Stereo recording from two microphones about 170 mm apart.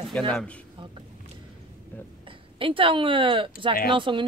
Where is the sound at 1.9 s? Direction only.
10° left (ahead or behind).